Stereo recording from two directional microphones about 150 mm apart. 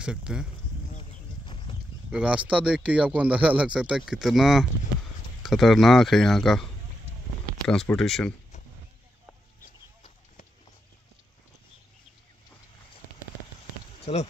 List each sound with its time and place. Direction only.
0.0 s speech: 5° right (ahead or behind)
0.9 s a sound: 35° left (ahead or behind)
2.0 s speech: 5° right (ahead or behind)
7.6 s speech: 5° left (ahead or behind)
9.6 s a sound: 60° left (ahead or behind)
14.1 s speech: 45° left (ahead or behind)